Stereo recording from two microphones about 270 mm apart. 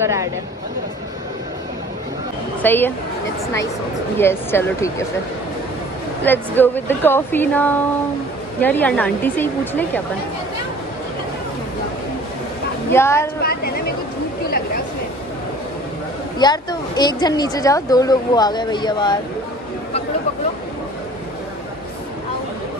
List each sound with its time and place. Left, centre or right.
0.0 s speech: centre
2.6 s speech: centre
4.2 s speech: centre
6.2 s speech: centre
12.9 s speech: centre
13.4 s a woman's voice: left
16.3 s speech: centre